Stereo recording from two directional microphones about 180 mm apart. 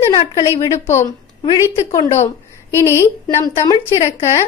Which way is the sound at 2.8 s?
15° left (ahead or behind).